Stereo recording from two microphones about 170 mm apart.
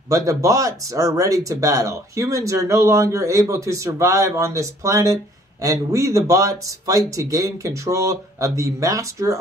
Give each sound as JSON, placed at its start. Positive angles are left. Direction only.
{"t": 0.1, "sound": "speech", "side_deg": -20}